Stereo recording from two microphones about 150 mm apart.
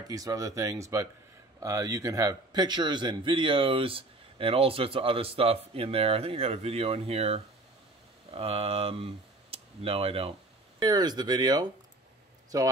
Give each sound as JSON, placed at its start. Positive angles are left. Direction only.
{"t": 0.1, "sound": "a man's voice", "side_deg": -25}
{"t": 10.8, "sound": "speech", "side_deg": -25}